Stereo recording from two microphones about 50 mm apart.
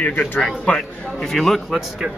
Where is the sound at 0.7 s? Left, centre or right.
Centre.